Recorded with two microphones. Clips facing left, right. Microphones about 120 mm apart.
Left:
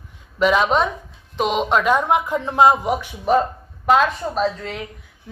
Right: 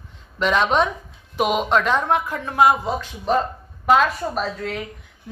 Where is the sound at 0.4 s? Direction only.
5° left (ahead or behind).